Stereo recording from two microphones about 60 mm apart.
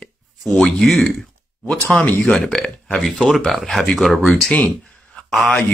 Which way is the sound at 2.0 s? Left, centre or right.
Left.